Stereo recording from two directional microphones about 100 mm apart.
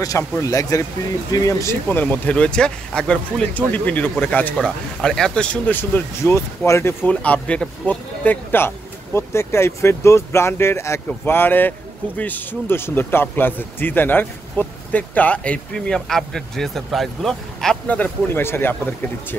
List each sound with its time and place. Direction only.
0.0 s speech: 35° left (ahead or behind)
1.9 s speech: 15° left (ahead or behind)
4.6 s speech: 5° left (ahead or behind)
17.8 s speech: 15° left (ahead or behind)